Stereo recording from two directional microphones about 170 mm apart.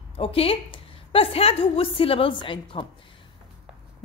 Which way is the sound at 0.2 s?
35° left (ahead or behind).